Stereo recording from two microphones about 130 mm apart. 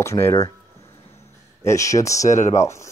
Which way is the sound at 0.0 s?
20° left (ahead or behind).